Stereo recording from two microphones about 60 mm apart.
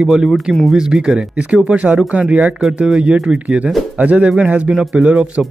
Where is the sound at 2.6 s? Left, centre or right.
Centre.